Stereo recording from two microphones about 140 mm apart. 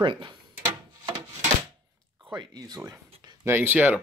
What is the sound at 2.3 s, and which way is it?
Speech, 30° right (ahead or behind).